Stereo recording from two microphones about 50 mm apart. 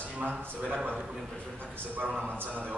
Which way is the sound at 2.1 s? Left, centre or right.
Right.